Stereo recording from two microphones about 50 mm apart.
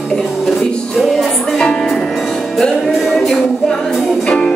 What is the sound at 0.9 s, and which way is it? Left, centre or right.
Music, centre.